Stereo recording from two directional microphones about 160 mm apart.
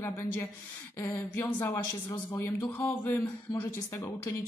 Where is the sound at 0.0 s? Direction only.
15° left (ahead or behind).